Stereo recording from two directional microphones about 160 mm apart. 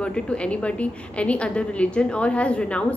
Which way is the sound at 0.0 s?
5° left (ahead or behind).